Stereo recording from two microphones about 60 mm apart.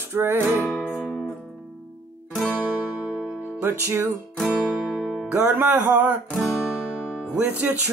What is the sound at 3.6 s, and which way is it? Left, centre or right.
Music, right.